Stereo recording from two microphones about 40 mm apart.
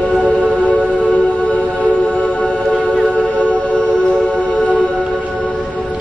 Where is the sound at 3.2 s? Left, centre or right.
Left.